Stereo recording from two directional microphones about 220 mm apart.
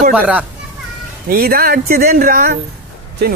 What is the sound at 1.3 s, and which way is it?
A man's voice, 45° right (ahead or behind).